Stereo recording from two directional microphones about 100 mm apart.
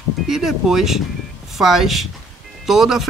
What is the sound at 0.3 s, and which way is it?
Speech, 5° right (ahead or behind).